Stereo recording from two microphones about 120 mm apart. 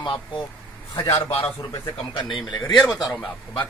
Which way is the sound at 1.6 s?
45° left (ahead or behind).